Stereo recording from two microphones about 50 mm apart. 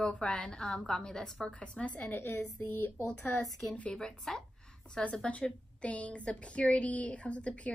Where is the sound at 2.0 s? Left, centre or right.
Left.